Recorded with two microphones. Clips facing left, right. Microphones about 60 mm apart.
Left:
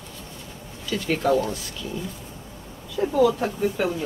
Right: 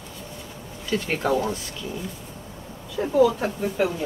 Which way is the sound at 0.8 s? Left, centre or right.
Right.